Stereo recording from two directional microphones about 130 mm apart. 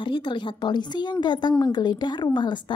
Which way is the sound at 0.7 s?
35° left (ahead or behind).